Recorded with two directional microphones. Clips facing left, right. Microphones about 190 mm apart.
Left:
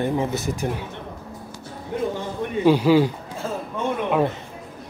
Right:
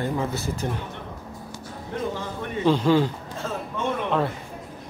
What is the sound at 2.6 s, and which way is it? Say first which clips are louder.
Speech: left 3 dB; 10° left (ahead or behind).